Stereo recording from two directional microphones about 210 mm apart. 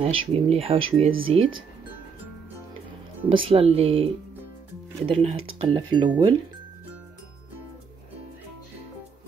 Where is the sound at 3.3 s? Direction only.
25° right (ahead or behind).